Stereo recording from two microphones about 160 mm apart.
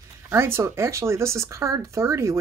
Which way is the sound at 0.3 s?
15° right (ahead or behind).